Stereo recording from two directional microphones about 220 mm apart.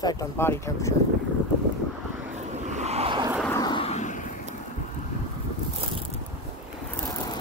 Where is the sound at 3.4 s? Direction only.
15° left (ahead or behind); by 4.3 s 35° left (ahead or behind).